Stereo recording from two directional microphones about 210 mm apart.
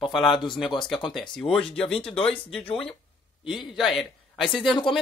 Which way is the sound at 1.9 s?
5° left (ahead or behind).